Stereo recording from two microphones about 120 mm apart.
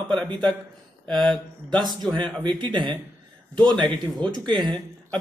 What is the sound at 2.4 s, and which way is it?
Speech, 40° right (ahead or behind).